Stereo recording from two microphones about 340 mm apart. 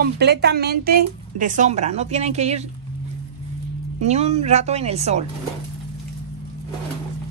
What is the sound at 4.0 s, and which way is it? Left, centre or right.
A woman's voice, centre.